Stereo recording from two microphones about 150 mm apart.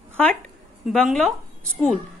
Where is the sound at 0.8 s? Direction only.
Centre (ahead or behind).